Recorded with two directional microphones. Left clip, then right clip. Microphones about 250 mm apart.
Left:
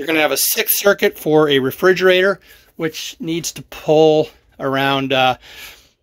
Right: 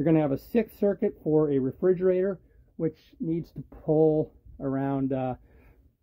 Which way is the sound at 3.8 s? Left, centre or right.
Centre.